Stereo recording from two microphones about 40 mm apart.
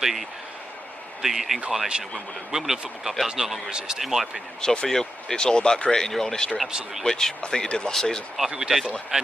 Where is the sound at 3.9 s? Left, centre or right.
Centre.